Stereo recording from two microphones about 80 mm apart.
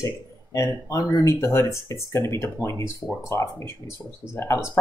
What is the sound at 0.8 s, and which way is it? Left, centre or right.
Speech, left.